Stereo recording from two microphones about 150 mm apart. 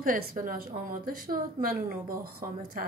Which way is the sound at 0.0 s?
70° right (ahead or behind).